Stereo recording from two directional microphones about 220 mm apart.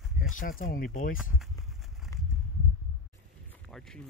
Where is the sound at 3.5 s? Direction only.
Centre (ahead or behind).